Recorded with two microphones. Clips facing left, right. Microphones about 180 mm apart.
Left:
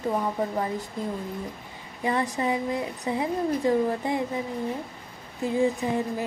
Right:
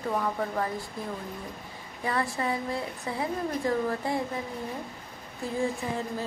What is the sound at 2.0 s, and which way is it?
Speech, 20° left (ahead or behind).